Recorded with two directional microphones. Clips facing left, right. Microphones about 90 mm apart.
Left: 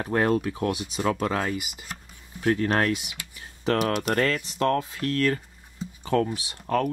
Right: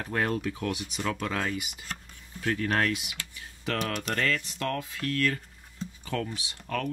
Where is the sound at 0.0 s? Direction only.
25° left (ahead or behind).